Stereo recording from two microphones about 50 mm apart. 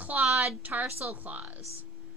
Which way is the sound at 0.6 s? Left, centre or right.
Right.